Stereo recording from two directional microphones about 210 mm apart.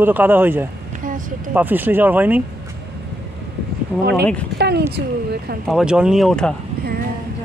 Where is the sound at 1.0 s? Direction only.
40° right (ahead or behind).